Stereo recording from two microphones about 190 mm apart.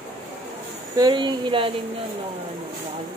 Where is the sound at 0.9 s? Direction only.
20° right (ahead or behind).